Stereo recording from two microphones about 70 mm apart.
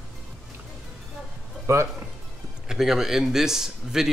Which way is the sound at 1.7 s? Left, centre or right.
Right.